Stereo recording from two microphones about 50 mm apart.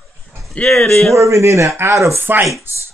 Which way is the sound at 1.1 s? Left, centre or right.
Right.